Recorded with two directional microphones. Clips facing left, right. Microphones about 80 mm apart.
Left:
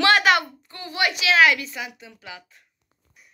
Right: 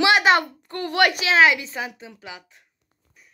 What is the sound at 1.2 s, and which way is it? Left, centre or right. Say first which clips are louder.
A woman's voice: right 1 dB; right.